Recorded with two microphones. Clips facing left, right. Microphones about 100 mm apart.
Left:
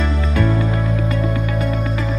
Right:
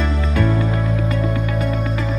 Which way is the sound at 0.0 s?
Centre (ahead or behind).